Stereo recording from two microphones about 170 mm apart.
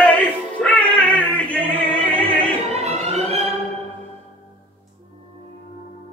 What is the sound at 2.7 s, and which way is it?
Music, 40° right (ahead or behind).